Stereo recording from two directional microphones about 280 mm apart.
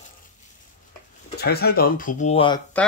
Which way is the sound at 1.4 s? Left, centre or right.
Left.